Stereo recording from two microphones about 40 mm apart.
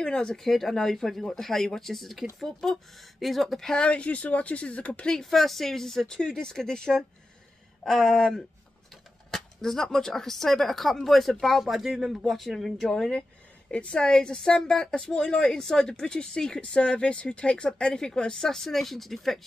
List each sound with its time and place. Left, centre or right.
0.0 s speech: centre
3.2 s a sound: centre
3.7 s speech: left
5.2 s speech: centre
6.9 s speech: centre
7.8 s a sound: centre
9.3 s speech: centre
11.4 s speech: centre
12.3 s a sound: centre
12.8 s speech: centre
13.7 s speech: left; by 19.4 s centre